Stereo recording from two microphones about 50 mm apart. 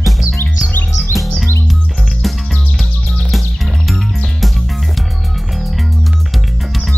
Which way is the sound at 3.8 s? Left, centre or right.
Centre.